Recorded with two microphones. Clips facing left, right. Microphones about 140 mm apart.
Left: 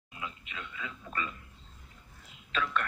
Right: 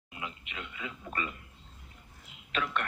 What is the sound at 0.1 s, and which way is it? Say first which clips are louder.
A man's voice: even; 25° right (ahead or behind).